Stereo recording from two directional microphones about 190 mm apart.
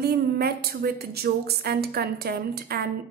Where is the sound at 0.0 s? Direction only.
55° right (ahead or behind).